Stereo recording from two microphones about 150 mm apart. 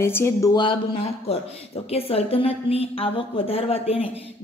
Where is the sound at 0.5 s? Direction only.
35° left (ahead or behind).